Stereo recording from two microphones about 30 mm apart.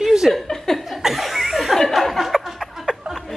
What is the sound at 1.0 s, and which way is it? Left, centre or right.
Chuckle, centre.